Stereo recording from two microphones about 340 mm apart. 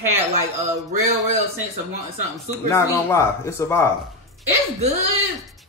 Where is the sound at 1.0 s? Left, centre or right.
Centre.